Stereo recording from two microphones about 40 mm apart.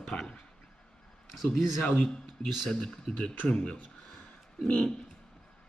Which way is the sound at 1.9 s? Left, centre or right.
Left.